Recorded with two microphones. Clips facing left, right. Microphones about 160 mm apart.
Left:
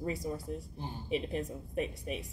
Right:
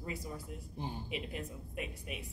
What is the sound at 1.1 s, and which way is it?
A woman's voice, 35° left (ahead or behind).